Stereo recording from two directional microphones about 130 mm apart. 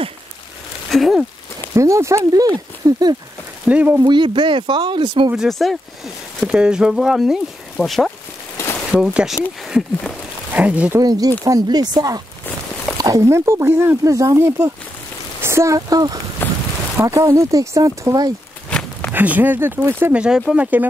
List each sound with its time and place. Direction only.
0.8 s a sound: centre (ahead or behind)
1.8 s speech: 25° right (ahead or behind)
3.6 s speech: 10° right (ahead or behind)
4.0 s speech: 35° right (ahead or behind)
5.3 s speech: centre (ahead or behind)
11.0 s speech: 30° right (ahead or behind)
16.4 s a sound: 15° left (ahead or behind)
16.9 s speech: 25° right (ahead or behind)
19.1 s speech: 15° right (ahead or behind)